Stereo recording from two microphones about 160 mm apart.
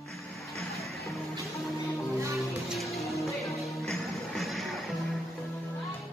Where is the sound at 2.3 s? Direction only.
Centre (ahead or behind).